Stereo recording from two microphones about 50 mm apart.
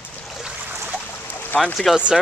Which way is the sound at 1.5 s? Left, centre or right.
Centre.